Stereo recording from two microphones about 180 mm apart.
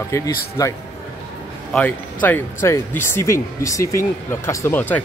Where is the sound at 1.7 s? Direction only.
10° left (ahead or behind).